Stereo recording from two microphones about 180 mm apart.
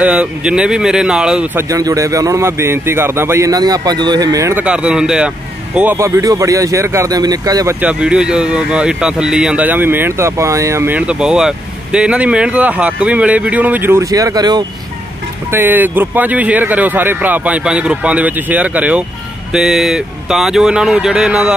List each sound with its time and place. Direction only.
0.0 s speech: 5° right (ahead or behind)
7.8 s speech: 5° right (ahead or behind); by 14.6 s 20° right (ahead or behind)
15.5 s speech: 10° right (ahead or behind)